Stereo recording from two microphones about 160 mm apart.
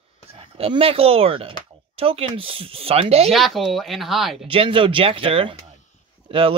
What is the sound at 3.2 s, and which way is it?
Speech, centre (ahead or behind).